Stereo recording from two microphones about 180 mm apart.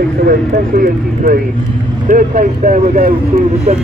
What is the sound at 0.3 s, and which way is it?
Speech, 55° right (ahead or behind).